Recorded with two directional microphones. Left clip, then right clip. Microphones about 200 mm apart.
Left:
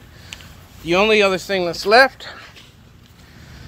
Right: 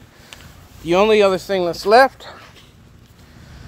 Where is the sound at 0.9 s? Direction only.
30° right (ahead or behind).